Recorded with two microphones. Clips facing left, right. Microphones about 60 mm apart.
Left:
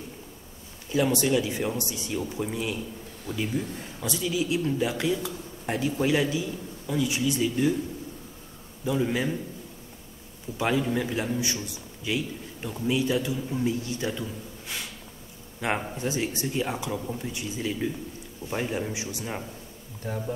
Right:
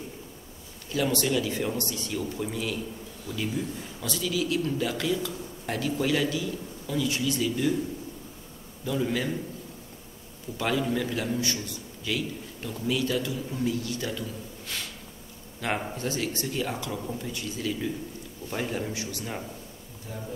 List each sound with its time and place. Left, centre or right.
0.9 s a man's voice: centre
3.3 s a man's voice: left
4.0 s a man's voice: centre
8.8 s a man's voice: centre
10.6 s a man's voice: centre